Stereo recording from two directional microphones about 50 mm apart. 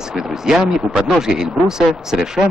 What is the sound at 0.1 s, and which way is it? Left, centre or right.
Speech, centre.